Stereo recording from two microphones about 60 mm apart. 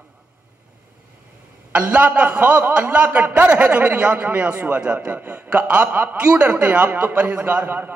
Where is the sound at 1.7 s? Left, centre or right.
Right.